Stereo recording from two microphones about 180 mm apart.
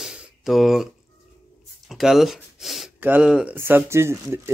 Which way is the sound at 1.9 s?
Centre (ahead or behind).